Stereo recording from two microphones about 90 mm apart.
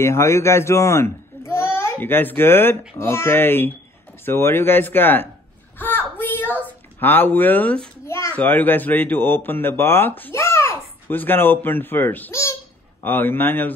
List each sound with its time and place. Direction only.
0.0 s speech: 30° left (ahead or behind)
5.8 s a sound: 20° left (ahead or behind)
8.1 s a sound: 35° left (ahead or behind)
8.4 s speech: 20° left (ahead or behind)
10.3 s babbling: 30° left (ahead or behind)
11.1 s speech: 25° left (ahead or behind)